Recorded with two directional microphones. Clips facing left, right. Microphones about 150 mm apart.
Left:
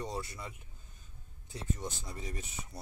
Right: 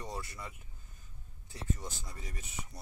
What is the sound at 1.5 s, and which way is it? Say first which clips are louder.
Speech: left 1 dB; 20° left (ahead or behind).